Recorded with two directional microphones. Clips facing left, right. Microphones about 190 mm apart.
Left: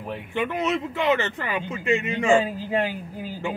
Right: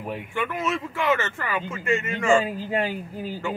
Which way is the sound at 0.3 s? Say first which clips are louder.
Left 3 dB; 20° left (ahead or behind).